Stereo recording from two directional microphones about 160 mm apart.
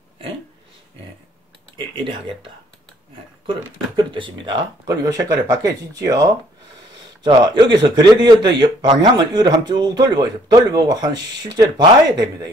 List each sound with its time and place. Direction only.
1.8 s speech: 30° right (ahead or behind)
3.9 s a man's voice: 30° right (ahead or behind)
7.2 s a man's voice: 25° right (ahead or behind)